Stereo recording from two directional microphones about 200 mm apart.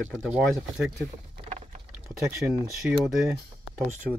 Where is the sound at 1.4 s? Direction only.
30° right (ahead or behind).